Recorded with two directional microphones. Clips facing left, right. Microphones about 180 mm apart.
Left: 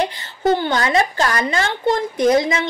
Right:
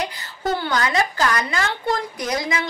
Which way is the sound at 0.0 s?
25° left (ahead or behind).